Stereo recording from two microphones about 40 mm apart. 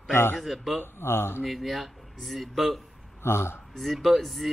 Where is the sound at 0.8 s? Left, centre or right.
Left.